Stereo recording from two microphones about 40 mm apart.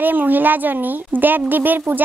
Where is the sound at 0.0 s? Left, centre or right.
Right.